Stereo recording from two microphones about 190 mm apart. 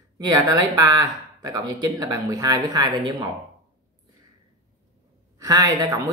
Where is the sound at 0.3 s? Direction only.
20° right (ahead or behind).